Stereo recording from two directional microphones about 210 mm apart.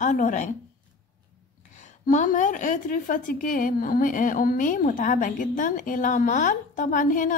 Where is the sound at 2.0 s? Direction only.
35° left (ahead or behind).